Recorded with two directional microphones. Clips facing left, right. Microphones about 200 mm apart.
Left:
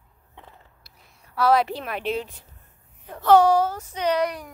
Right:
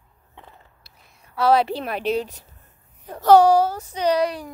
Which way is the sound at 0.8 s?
25° right (ahead or behind).